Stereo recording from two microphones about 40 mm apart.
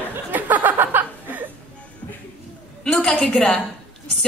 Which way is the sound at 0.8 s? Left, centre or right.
Right.